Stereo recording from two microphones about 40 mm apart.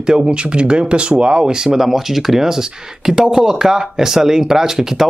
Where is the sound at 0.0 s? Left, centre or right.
Centre.